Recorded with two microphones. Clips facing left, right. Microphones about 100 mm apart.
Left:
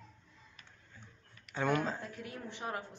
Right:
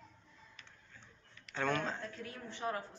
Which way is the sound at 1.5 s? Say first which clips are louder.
Left 3 dB; 10° left (ahead or behind).